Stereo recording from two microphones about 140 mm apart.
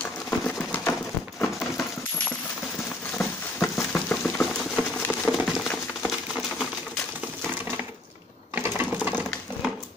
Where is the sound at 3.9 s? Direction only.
10° left (ahead or behind).